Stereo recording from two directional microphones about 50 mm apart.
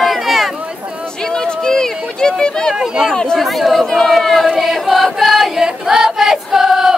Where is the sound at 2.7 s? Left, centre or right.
Centre.